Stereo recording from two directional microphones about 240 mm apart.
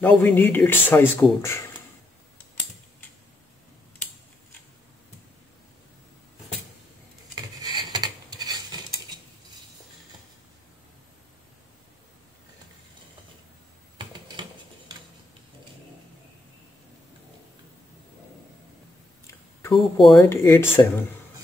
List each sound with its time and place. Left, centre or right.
0.0 s speech: centre
7.9 s rub: centre
19.7 s speech: centre
20.2 s speech: centre